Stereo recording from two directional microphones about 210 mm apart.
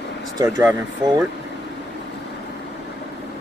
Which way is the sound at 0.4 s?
15° right (ahead or behind).